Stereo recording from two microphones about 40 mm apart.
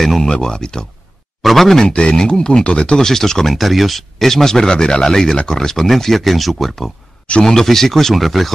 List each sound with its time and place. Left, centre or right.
0.2 s speech: centre
1.4 s speech: centre
1.8 s speech: left
3.1 s speech: centre